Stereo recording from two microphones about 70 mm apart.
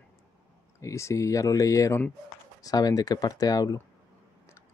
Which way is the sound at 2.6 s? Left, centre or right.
Left.